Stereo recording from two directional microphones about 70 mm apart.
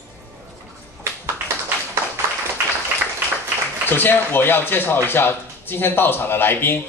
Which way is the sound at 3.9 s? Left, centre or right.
Left.